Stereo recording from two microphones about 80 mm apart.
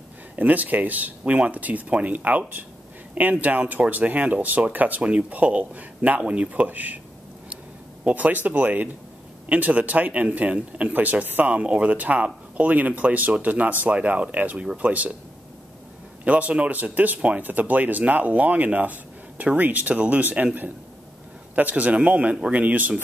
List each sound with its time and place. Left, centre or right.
0.4 s speech: centre
8.0 s speech: centre
16.3 s speech: centre
21.5 s speech: centre